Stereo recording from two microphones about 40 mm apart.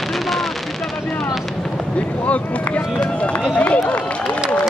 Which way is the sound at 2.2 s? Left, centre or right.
Left.